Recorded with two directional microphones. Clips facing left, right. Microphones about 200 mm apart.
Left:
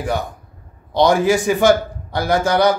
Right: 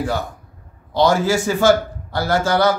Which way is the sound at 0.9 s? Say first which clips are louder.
Left 2 dB; 15° left (ahead or behind).